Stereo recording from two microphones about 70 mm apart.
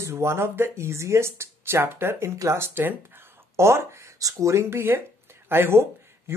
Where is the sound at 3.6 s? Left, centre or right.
Right.